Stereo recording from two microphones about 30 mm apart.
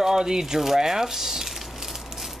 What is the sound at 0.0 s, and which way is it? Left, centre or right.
Speech, centre.